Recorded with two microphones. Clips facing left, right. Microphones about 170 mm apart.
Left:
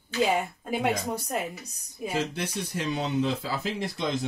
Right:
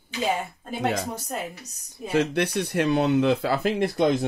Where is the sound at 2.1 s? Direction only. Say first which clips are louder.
Right 8 dB; 65° right (ahead or behind).